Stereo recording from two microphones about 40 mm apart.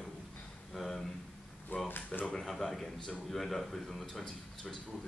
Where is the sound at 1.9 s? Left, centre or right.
Left.